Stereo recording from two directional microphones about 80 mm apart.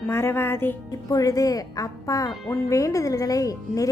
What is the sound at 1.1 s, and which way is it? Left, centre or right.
Speech, left.